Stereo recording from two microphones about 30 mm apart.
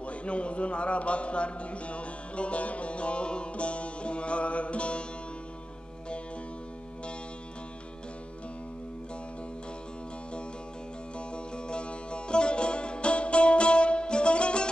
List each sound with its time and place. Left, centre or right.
0.0 s a man's voice: left
11.1 s music: left